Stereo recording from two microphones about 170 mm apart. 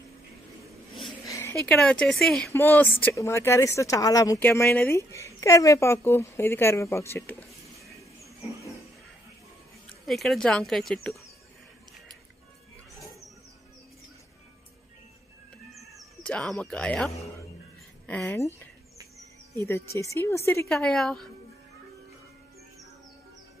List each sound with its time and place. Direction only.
1.2 s speech: 15° left (ahead or behind)
10.0 s speech: centre (ahead or behind)
16.2 s speech: 5° left (ahead or behind)
20.6 s speech: 5° left (ahead or behind)